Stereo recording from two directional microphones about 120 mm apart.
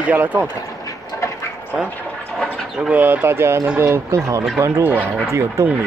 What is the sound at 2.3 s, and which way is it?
Speech, 5° left (ahead or behind).